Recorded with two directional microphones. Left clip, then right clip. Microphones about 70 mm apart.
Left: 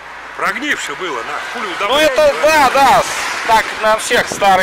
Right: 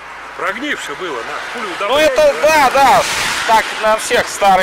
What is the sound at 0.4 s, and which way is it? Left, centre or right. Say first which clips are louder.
Speech: left 2 dB; left.